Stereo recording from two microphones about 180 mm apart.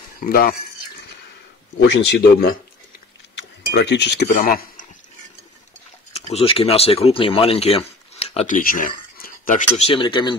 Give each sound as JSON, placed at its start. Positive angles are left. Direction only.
{"t": 0.2, "sound": "speech", "side_deg": 55}
{"t": 1.8, "sound": "speech", "side_deg": 75}
{"t": 3.3, "sound": "cutlery", "side_deg": 75}
{"t": 4.3, "sound": "speech", "side_deg": 50}
{"t": 6.1, "sound": "speech", "side_deg": 35}